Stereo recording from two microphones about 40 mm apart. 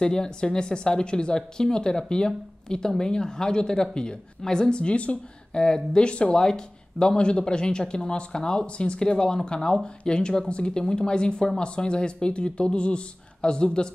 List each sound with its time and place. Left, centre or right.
0.0 s speech: centre
5.5 s speech: centre
6.4 s speech: centre